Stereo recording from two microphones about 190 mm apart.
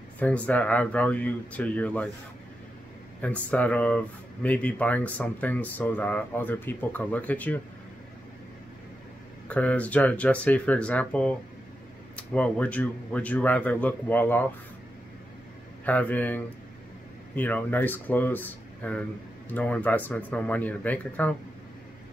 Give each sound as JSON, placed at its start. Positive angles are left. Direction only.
{"t": 0.2, "sound": "speech", "side_deg": 10}
{"t": 3.2, "sound": "speech", "side_deg": 5}
{"t": 9.5, "sound": "speech", "side_deg": 5}
{"t": 15.8, "sound": "speech", "side_deg": 10}